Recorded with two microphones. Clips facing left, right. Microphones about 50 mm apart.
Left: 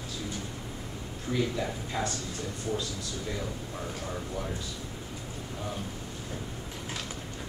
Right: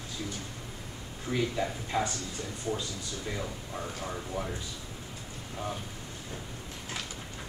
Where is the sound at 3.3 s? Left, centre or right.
Centre.